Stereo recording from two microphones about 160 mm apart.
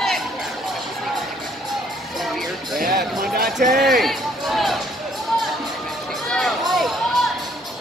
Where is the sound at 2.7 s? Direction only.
65° right (ahead or behind).